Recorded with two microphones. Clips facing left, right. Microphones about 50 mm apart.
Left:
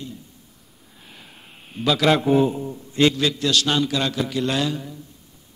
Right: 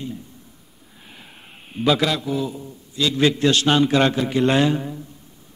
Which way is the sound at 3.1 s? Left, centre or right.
Right.